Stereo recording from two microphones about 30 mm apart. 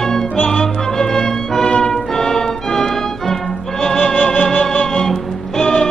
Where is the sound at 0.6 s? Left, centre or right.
Left.